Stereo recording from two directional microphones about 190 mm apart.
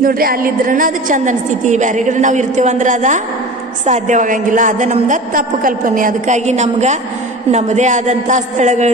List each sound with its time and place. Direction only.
0.0 s a woman's voice: 50° right (ahead or behind)